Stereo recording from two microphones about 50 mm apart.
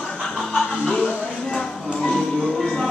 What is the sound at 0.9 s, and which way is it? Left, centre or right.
Music, centre.